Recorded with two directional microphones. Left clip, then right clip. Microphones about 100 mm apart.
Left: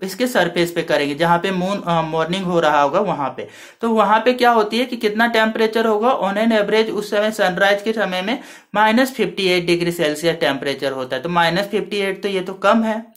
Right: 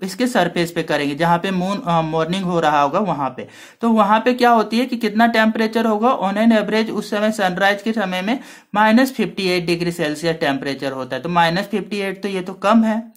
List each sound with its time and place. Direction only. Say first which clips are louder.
0.2 s speech: left 1 dB; 40° right (ahead or behind)